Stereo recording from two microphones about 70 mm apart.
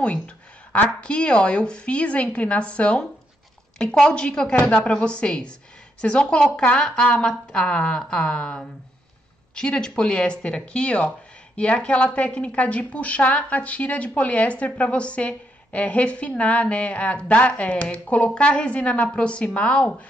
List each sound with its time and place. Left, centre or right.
0.7 s a woman's voice: centre